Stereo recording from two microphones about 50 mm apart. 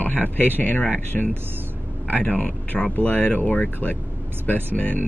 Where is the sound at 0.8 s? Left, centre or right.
Left.